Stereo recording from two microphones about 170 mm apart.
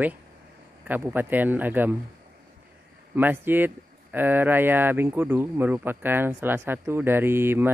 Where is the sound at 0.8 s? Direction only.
10° right (ahead or behind).